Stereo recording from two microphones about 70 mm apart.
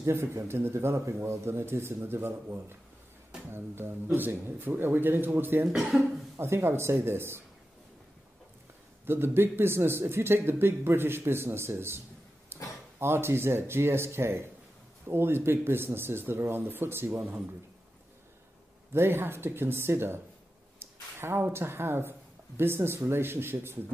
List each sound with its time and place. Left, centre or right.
0.0 s speech: right
5.7 s speech: centre
6.3 s speech: right
9.0 s speech: right
13.0 s speech: right
18.9 s speech: right